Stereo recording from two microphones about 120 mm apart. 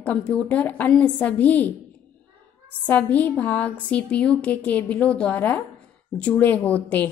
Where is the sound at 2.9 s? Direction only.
15° left (ahead or behind).